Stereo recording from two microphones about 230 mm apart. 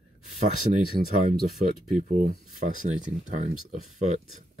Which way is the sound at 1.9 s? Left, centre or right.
Right.